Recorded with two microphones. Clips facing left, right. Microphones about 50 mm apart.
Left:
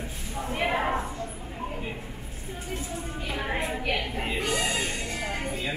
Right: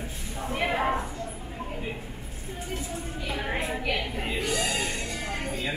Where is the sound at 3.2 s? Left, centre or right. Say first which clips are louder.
Even; centre.